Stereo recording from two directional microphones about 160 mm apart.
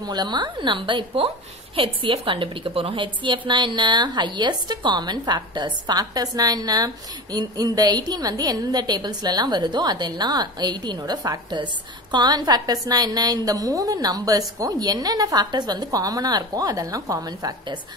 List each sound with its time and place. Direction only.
0.0 s a woman's voice: 25° right (ahead or behind)